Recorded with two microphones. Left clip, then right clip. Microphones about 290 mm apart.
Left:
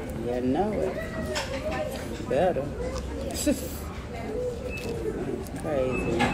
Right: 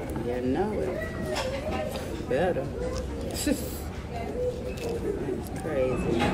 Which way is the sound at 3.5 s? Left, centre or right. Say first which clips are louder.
Left 2 dB; centre.